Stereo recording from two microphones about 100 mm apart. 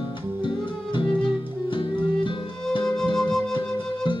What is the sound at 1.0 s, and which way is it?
Music, 55° left (ahead or behind).